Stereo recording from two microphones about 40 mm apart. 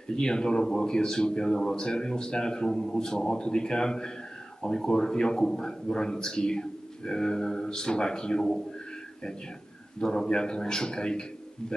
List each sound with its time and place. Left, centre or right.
0.1 s a man's voice: centre
9.9 s a man's voice: centre